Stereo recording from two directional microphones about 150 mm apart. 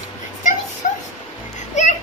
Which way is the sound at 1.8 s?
50° left (ahead or behind).